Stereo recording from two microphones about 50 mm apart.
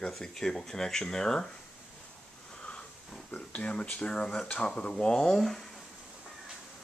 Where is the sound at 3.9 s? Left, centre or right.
Centre.